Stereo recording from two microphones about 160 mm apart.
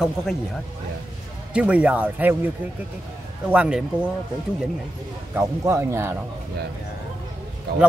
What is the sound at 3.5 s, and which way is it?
Speech, 10° right (ahead or behind).